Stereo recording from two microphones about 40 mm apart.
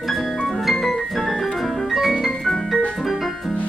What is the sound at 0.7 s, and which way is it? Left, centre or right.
Organ, centre.